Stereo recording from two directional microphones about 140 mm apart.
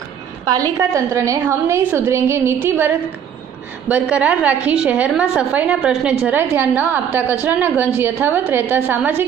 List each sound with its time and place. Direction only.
0.5 s a woman's voice: 25° right (ahead or behind)
3.9 s a woman's voice: 10° right (ahead or behind)